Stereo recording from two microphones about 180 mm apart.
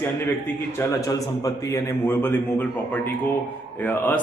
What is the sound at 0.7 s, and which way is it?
A man's voice, 15° left (ahead or behind).